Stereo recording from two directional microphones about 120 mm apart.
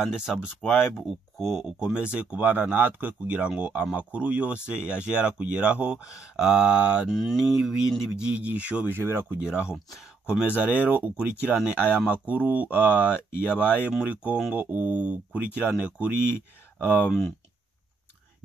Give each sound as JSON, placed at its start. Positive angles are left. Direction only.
{"t": 0.0, "sound": "speech", "side_deg": -5}
{"t": 0.6, "sound": "speech", "side_deg": 15}
{"t": 1.0, "sound": "speech", "side_deg": 0}
{"t": 9.7, "sound": "speech", "side_deg": -5}
{"t": 13.4, "sound": "speech", "side_deg": 15}
{"t": 13.9, "sound": "speech", "side_deg": -10}
{"t": 16.8, "sound": "speech", "side_deg": 15}